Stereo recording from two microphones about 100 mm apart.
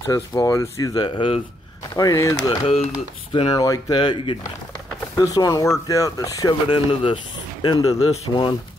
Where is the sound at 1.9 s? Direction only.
35° left (ahead or behind).